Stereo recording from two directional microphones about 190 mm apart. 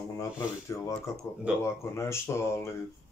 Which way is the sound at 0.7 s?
15° left (ahead or behind).